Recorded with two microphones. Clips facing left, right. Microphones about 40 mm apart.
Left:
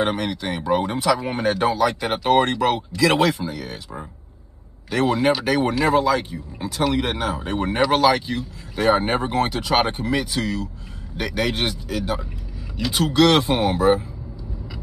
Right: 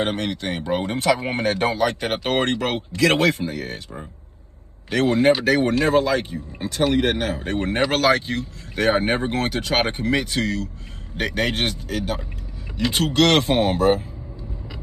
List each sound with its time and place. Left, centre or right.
0.0 s speech: right
0.7 s speech: right
1.1 s speech: right
4.9 s speech: right